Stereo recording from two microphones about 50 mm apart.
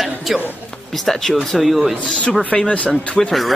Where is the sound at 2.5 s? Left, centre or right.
Left.